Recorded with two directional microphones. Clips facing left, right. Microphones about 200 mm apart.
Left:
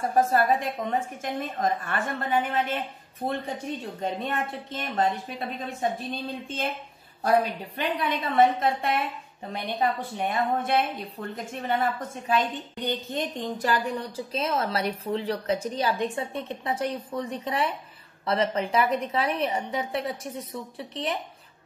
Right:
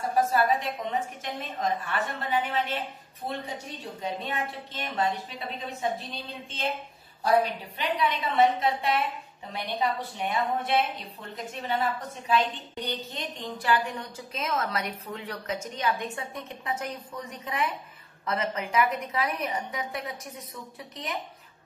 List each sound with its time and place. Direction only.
0.1 s a woman's voice: 50° left (ahead or behind); by 21.2 s 30° left (ahead or behind)